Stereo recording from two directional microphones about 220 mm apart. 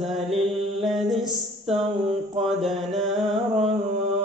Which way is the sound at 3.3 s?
25° right (ahead or behind).